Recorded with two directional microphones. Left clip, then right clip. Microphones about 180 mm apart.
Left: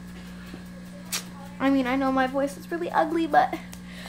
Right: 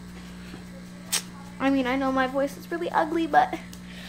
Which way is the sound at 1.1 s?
15° right (ahead or behind).